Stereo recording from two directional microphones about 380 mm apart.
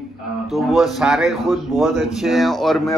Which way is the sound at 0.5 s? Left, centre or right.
Centre.